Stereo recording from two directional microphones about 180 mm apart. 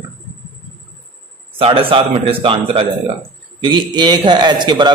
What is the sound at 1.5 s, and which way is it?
A man's voice, 30° right (ahead or behind).